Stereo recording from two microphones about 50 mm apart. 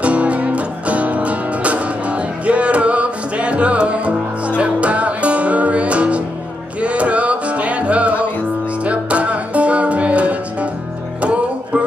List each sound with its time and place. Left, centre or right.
0.0 s music: right